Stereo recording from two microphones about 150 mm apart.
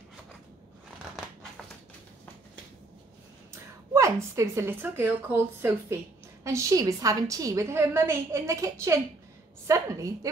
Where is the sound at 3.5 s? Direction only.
20° right (ahead or behind).